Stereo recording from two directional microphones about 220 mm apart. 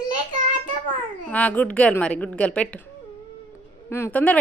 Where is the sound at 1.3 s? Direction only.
5° left (ahead or behind).